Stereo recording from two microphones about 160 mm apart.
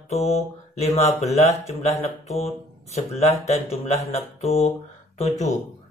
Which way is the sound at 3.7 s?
40° left (ahead or behind).